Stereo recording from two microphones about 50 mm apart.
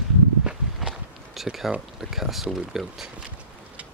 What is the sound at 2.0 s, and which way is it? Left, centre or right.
Speech, centre.